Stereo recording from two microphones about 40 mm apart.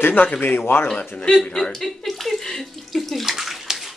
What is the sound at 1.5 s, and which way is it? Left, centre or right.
Speech, centre.